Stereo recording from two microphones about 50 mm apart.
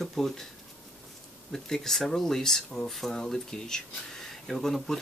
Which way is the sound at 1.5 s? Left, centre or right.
Centre.